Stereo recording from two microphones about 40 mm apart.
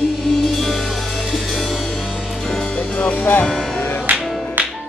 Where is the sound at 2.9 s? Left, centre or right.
Left.